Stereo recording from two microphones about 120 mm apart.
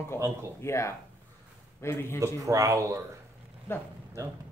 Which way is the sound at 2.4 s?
30° right (ahead or behind).